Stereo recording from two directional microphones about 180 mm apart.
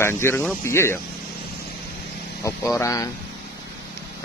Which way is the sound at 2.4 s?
15° left (ahead or behind).